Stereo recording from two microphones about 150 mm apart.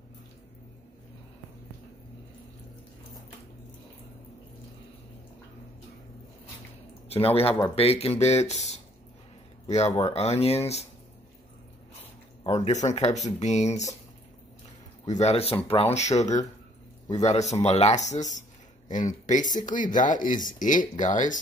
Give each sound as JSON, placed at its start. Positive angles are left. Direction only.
{"t": 7.1, "sound": "speech", "side_deg": 40}
{"t": 12.6, "sound": "speech", "side_deg": 50}
{"t": 15.0, "sound": "speech", "side_deg": 50}